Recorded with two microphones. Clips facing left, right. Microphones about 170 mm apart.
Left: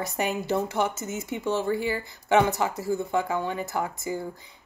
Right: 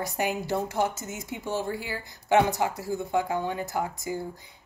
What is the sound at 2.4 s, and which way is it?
Speech, 15° right (ahead or behind).